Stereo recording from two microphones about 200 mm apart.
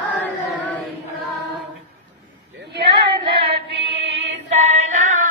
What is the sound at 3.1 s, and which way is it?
Female singing, 25° right (ahead or behind).